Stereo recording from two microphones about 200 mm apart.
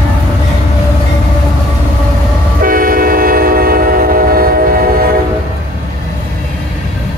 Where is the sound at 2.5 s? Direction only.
45° right (ahead or behind).